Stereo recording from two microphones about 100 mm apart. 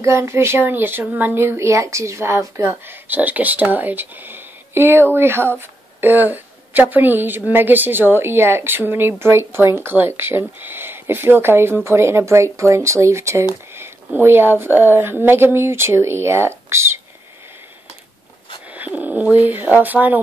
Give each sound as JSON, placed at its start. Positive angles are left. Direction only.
{"t": 0.0, "sound": "speech", "side_deg": -30}
{"t": 18.7, "sound": "speech", "side_deg": -15}